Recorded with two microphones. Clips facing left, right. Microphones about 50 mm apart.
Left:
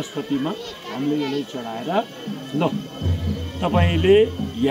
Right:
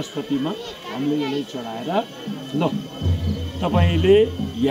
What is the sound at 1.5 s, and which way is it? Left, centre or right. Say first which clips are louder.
Speech: even; centre.